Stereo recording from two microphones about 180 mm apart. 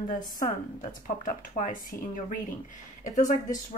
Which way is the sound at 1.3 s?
45° left (ahead or behind).